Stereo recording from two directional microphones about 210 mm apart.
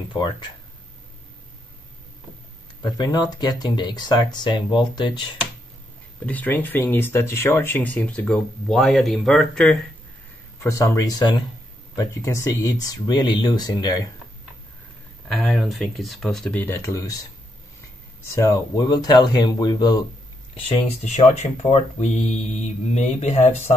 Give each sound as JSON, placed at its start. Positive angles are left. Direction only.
{"t": 0.1, "sound": "speech", "side_deg": 20}
{"t": 2.8, "sound": "speech", "side_deg": 20}
{"t": 6.2, "sound": "speech", "side_deg": 10}
{"t": 10.6, "sound": "speech", "side_deg": 15}
{"t": 15.3, "sound": "speech", "side_deg": 0}
{"t": 18.3, "sound": "speech", "side_deg": 15}
{"t": 20.6, "sound": "speech", "side_deg": 30}